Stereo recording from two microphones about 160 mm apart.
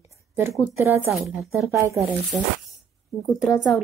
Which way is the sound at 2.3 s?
5° right (ahead or behind).